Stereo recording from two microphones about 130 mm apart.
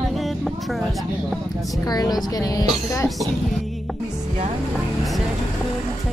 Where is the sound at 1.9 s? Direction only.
30° left (ahead or behind).